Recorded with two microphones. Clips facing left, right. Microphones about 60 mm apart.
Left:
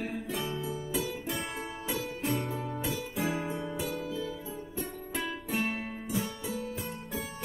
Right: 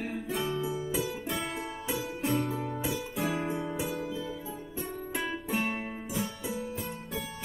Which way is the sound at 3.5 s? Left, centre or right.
Centre.